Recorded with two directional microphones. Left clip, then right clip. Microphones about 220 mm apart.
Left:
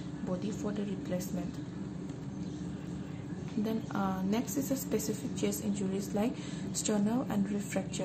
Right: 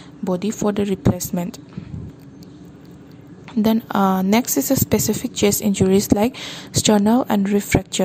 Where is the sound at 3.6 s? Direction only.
50° right (ahead or behind).